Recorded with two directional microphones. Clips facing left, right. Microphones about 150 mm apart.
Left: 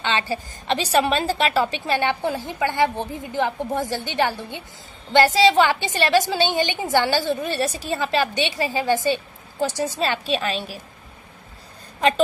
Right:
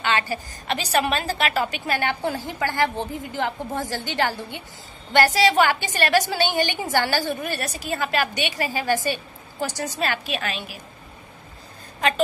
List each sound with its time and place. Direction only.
0.0 s a woman's voice: 30° left (ahead or behind)